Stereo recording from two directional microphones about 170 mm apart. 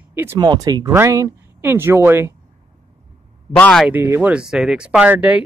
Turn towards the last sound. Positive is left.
turn(degrees=-5)  # may be behind; listen again after turning